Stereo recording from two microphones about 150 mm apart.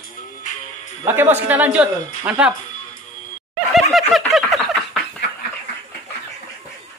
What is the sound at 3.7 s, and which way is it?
Snicker, centre (ahead or behind).